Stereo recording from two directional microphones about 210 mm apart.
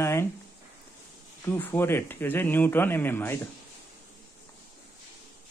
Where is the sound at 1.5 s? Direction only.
10° left (ahead or behind).